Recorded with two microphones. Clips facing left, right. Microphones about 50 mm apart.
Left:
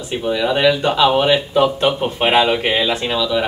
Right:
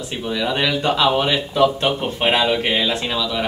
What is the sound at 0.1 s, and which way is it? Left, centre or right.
Speech, centre.